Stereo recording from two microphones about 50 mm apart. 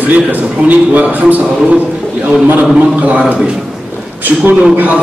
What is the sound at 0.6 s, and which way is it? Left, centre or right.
Speech, right.